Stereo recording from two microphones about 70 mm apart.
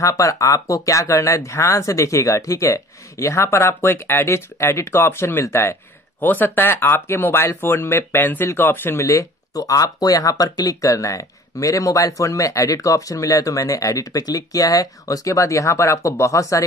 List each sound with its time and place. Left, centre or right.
0.0 s speech: left
9.0 s speech: left